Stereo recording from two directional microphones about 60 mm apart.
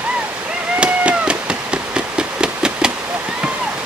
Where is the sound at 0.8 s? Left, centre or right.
Centre.